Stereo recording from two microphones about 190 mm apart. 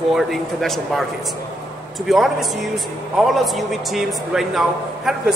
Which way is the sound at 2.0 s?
Centre (ahead or behind).